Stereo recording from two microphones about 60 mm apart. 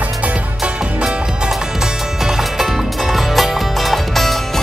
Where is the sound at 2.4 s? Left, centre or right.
Centre.